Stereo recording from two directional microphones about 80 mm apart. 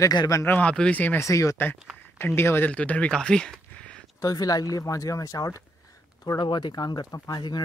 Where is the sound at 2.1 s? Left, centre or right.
Left.